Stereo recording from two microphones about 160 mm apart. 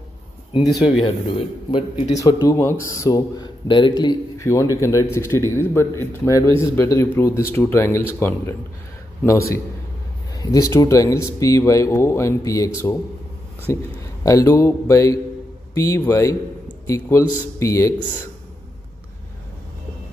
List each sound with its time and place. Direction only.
0.8 s a man's voice: 35° left (ahead or behind)
2.1 s a man's voice: 20° left (ahead or behind)